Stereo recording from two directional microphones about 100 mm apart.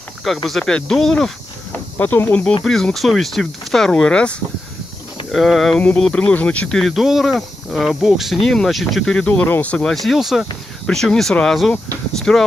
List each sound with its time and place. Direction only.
0.5 s speech: 5° left (ahead or behind)
2.0 s cricket: 20° left (ahead or behind)
2.6 s speech: 5° left (ahead or behind)
5.3 s speech: centre (ahead or behind)
6.9 s speech: centre (ahead or behind)